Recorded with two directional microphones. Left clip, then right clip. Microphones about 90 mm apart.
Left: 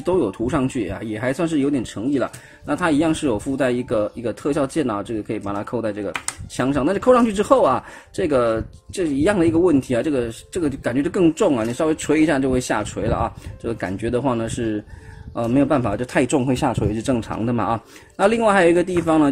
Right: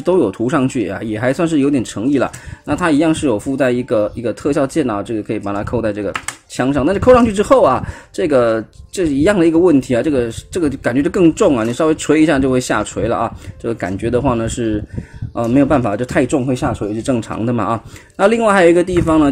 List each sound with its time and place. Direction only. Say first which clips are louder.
0.0 s speech: right 6 dB; 55° right (ahead or behind)
2.2 s speech: right 5 dB; 35° right (ahead or behind)
16.3 s speech: right 3 dB; centre (ahead or behind)
16.6 s speech: right 2 dB; 15° left (ahead or behind)
17.0 s speech: right 4 dB; 25° right (ahead or behind)